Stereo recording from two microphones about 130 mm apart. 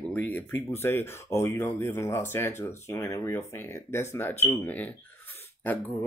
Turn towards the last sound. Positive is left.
turn(degrees=15)  # may be behind; listen again after turning